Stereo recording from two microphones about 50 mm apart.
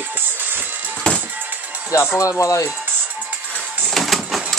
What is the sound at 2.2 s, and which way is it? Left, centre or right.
Speech, left.